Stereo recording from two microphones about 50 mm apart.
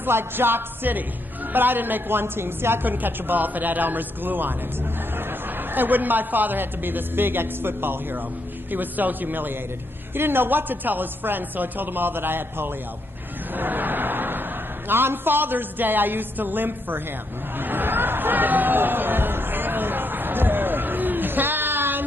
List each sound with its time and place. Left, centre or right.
0.0 s speech: right
2.8 s a woman's voice: right
5.7 s a woman's voice: right
13.6 s a sound: right
14.9 s a woman's voice: right
17.6 s a sound: right